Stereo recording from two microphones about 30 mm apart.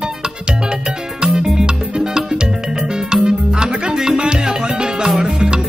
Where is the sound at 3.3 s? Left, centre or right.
Right.